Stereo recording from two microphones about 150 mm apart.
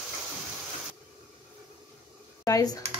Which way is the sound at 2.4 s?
25° left (ahead or behind).